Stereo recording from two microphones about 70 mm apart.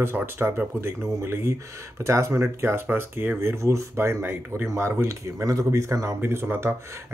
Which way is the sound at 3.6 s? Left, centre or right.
Right.